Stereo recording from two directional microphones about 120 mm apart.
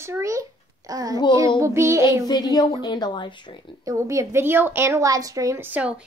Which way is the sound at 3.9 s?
25° right (ahead or behind).